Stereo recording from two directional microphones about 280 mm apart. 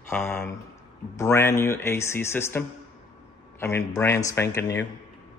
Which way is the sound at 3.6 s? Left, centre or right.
Centre.